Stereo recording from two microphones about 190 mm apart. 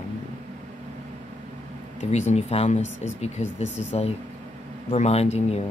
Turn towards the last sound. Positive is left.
turn(degrees=35)  # may be behind; listen again after turning